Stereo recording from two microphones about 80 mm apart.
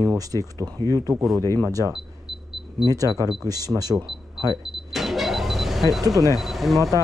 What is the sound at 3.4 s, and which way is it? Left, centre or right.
Speech, right.